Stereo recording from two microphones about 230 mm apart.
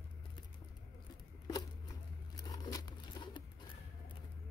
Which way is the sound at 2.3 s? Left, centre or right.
Centre.